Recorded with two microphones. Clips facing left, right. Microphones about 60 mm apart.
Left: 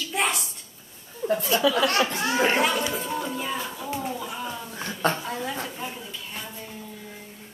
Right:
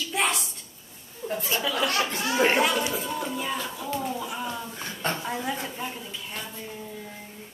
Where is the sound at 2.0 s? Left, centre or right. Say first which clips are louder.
Left 2 dB; left.